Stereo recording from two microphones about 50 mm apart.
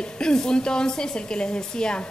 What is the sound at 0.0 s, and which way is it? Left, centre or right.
A woman's voice, centre.